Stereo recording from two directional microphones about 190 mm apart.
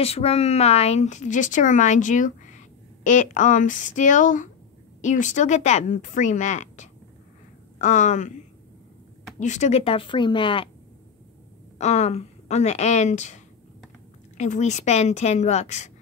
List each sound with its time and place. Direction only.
0.0 s speech: 30° left (ahead or behind)
9.4 s speech: 35° left (ahead or behind)
11.8 s speech: 35° left (ahead or behind)